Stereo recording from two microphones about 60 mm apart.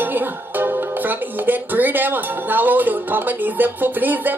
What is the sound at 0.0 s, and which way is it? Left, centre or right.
Music, right.